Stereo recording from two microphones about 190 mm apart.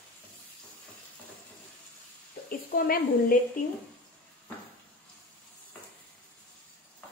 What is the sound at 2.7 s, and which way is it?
Speech, 50° left (ahead or behind).